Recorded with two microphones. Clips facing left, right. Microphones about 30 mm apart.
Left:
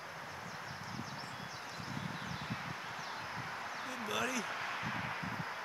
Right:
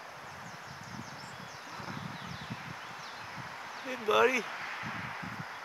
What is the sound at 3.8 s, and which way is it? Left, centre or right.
Speech, right.